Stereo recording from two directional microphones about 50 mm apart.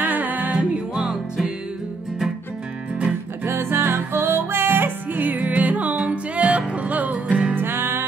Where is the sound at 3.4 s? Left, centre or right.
Right.